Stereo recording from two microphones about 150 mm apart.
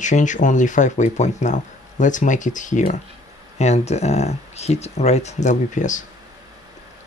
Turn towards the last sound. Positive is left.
turn(degrees=55)  # may be behind; listen again after turning